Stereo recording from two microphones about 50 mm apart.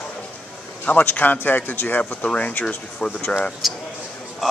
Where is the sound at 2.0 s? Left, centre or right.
Left.